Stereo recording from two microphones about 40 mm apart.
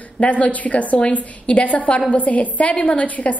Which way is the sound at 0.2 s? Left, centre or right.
Left.